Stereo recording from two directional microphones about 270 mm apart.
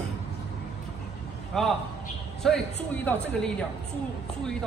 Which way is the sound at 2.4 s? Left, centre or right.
Centre.